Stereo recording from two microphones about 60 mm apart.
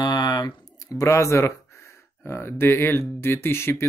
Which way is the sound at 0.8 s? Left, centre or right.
Left.